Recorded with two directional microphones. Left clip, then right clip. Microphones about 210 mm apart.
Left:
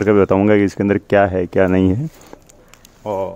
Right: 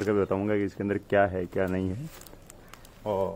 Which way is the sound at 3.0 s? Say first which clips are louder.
Left 7 dB; 40° left (ahead or behind).